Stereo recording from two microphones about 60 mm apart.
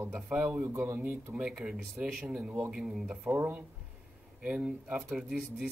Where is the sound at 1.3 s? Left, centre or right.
Right.